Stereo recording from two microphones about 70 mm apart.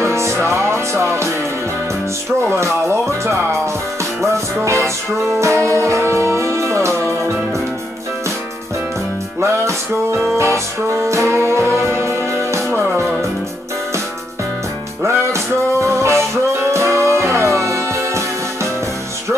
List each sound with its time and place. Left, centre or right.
0.0 s music: right
2.4 s speech: right
4.0 s music: right
9.4 s music: right
15.0 s music: right